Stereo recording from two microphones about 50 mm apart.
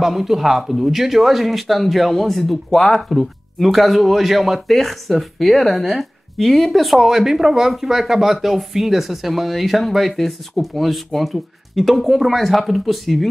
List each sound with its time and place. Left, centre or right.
0.0 s speech: centre